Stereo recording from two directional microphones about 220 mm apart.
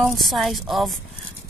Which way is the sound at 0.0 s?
Centre (ahead or behind).